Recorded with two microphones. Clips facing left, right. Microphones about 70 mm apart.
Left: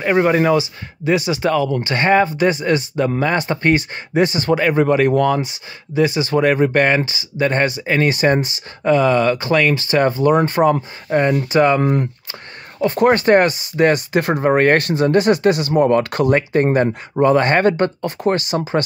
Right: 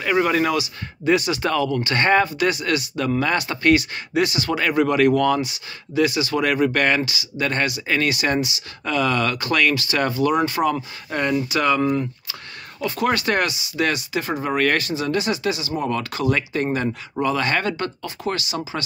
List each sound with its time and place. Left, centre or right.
0.0 s speech: left
2.2 s speech: left
8.8 s speech: left
11.1 s speech: centre
11.4 s speech: left
11.9 s speech: left